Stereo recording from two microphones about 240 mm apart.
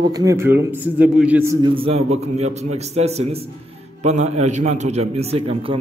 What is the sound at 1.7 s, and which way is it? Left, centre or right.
A man's voice, right.